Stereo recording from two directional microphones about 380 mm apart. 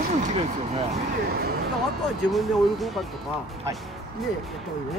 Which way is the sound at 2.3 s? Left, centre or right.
Centre.